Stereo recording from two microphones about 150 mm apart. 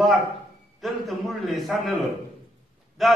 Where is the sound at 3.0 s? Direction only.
Centre (ahead or behind).